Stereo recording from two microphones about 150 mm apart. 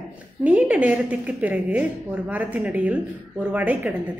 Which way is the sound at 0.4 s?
10° right (ahead or behind).